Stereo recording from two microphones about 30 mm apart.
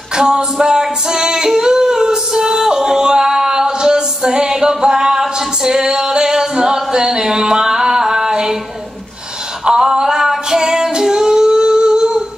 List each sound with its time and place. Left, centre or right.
0.1 s singing: right
9.7 s music: right